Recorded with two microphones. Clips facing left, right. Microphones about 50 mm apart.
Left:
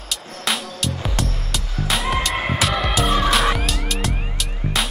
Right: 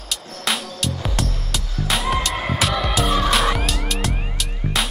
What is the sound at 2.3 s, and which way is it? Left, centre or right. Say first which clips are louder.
Music: left 1 dB; left.